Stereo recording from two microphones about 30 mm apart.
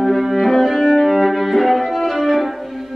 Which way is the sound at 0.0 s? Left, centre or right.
Centre.